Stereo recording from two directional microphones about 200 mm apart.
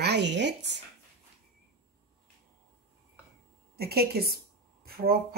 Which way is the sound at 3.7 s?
50° right (ahead or behind).